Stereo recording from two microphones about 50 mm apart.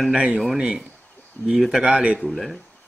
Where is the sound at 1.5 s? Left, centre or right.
Centre.